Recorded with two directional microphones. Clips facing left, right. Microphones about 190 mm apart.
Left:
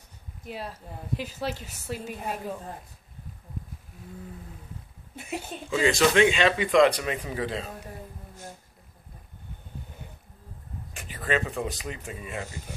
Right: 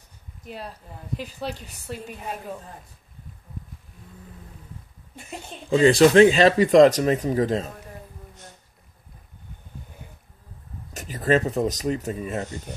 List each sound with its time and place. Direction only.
0.5 s a woman's voice: 5° left (ahead or behind)
5.1 s a woman's voice: 5° left (ahead or behind)
5.7 s speech: 35° right (ahead or behind)
10.9 s speech: 40° right (ahead or behind)